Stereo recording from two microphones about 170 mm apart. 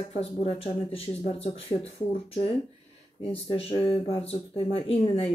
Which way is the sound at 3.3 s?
35° left (ahead or behind).